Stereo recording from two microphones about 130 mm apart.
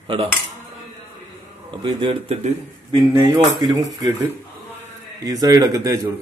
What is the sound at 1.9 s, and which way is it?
Speech, 40° right (ahead or behind).